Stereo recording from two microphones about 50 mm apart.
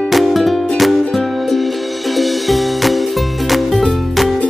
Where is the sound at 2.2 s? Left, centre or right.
Centre.